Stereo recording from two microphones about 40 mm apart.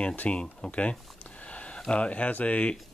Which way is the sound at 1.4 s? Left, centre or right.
Left.